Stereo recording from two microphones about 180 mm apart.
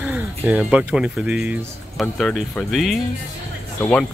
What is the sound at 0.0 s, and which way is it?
Speech, 10° right (ahead or behind).